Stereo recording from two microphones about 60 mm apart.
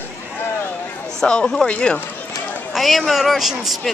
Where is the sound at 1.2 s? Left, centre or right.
Centre.